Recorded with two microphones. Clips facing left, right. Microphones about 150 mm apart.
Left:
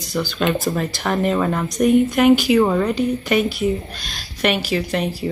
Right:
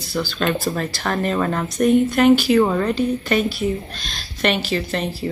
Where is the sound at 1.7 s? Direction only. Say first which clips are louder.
Left 1 dB; 15° left (ahead or behind).